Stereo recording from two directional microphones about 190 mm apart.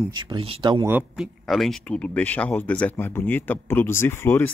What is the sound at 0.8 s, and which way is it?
Speech, 5° right (ahead or behind).